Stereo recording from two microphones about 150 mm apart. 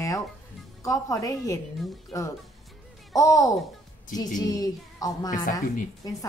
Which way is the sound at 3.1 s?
25° left (ahead or behind).